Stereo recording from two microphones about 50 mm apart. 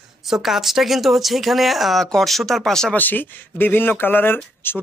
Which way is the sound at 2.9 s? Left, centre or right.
Left.